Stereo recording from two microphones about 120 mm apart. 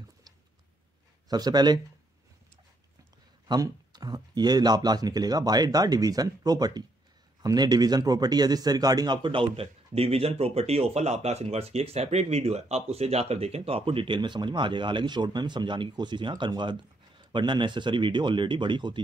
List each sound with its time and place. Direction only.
1.3 s speech: 35° right (ahead or behind)
3.4 s speech: 35° right (ahead or behind)